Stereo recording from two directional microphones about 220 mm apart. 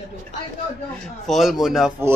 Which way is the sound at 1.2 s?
Centre (ahead or behind).